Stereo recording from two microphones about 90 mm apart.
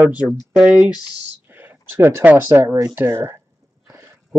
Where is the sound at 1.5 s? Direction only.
20° right (ahead or behind).